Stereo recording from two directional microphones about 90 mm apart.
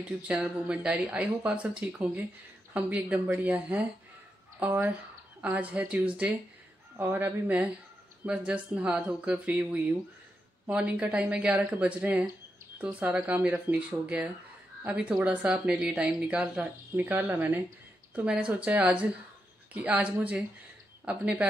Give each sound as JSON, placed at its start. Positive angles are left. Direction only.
{"t": 0.3, "sound": "speech", "side_deg": -10}